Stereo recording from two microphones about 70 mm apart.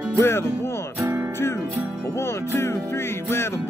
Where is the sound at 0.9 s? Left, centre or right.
Right.